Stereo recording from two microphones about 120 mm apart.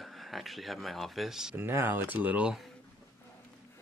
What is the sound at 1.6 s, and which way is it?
Speech, 20° right (ahead or behind).